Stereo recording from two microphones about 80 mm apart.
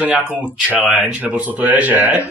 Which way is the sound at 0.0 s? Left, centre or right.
Centre.